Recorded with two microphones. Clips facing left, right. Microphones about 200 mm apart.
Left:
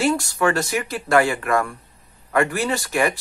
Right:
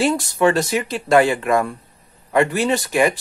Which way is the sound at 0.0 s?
20° right (ahead or behind).